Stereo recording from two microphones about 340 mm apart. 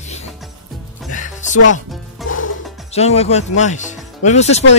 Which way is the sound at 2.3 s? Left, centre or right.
Left.